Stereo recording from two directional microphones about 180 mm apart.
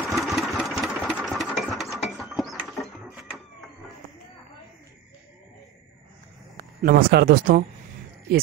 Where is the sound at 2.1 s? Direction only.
Centre (ahead or behind).